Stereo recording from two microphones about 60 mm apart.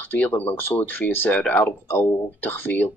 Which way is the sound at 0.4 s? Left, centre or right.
Left.